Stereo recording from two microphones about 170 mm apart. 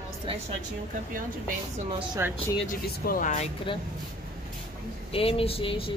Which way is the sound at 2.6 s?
55° left (ahead or behind).